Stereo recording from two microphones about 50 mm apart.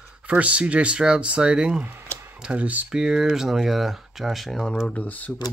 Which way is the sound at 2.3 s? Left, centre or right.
Centre.